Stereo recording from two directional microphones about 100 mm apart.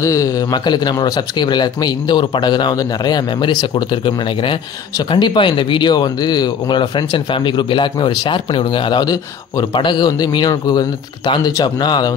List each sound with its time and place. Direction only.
0.0 s speech: 35° left (ahead or behind); by 9.0 s 55° left (ahead or behind)
9.0 s speech: 40° left (ahead or behind)
9.8 s speech: 50° left (ahead or behind)